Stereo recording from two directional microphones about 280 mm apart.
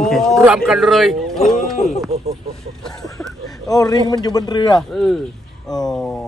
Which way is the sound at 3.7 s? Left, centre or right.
Centre.